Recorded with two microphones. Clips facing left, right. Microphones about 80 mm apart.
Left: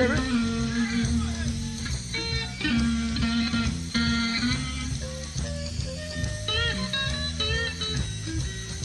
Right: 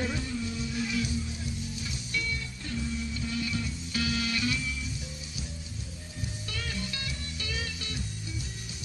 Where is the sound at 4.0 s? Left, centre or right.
Left.